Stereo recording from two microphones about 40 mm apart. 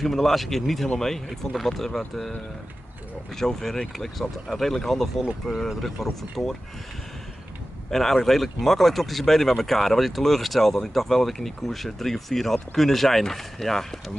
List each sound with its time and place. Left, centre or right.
0.0 s speech: centre
3.3 s speech: centre
7.9 s speech: centre